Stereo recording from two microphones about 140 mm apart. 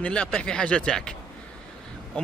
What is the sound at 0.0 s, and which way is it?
A man's voice, 10° left (ahead or behind).